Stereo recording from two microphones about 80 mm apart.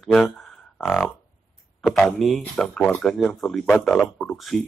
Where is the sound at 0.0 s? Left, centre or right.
Centre.